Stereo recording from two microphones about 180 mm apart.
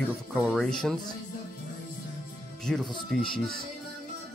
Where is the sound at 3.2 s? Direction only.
55° left (ahead or behind).